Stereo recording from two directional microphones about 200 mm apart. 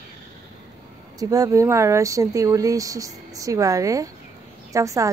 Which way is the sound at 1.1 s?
15° right (ahead or behind).